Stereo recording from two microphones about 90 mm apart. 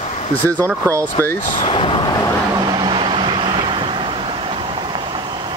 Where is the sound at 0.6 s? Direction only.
35° right (ahead or behind).